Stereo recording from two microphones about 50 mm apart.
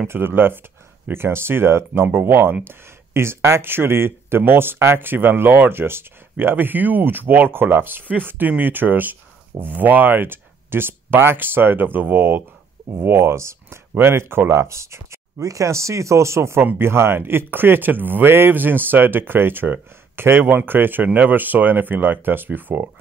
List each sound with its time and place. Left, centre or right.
0.1 s speech: right
2.0 s speech: right
6.3 s speech: right
13.0 s speech: right
13.9 s speech: right
14.5 s speech: right
16.8 s speech: right